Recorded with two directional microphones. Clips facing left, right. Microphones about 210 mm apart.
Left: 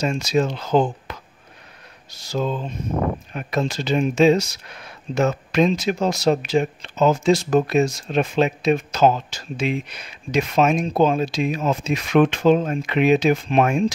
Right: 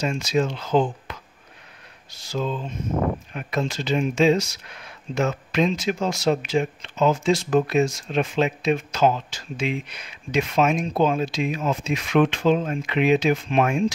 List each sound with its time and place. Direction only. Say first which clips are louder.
0.0 s speech: left 2 dB; 40° left (ahead or behind)